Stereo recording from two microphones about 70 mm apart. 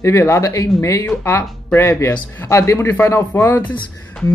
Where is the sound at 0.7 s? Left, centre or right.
Left.